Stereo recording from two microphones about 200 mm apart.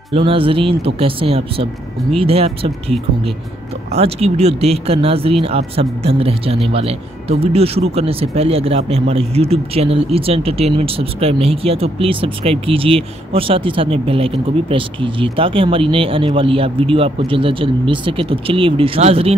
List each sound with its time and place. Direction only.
0.1 s speech: 25° right (ahead or behind)
3.9 s speech: 30° right (ahead or behind)